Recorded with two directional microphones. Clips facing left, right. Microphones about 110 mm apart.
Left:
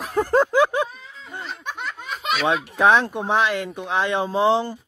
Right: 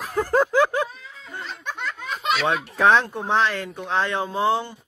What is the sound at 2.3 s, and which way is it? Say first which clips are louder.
Speech: left 4 dB; 15° left (ahead or behind).